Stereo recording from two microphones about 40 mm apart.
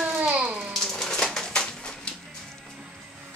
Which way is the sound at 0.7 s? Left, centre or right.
Centre.